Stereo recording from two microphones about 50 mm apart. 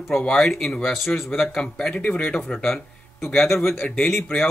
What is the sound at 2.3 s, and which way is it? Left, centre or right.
Speech, centre.